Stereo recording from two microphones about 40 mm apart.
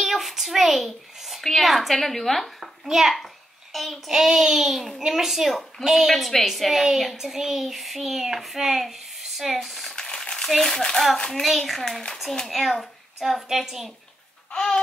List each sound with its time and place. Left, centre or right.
0.0 s a sound: centre
1.4 s a woman's voice: centre
4.1 s child singing: centre
5.9 s a woman's voice: centre
9.9 s a sound: centre
10.7 s a child's voice: centre
11.4 s a woman's voice: centre
14.5 s babbling: centre